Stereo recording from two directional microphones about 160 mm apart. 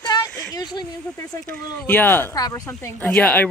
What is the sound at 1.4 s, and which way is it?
Speech, 10° left (ahead or behind).